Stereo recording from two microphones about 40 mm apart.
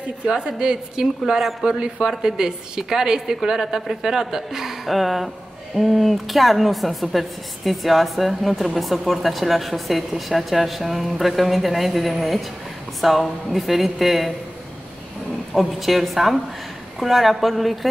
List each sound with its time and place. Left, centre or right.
0.5 s a woman's voice: centre
15.5 s a woman's voice: centre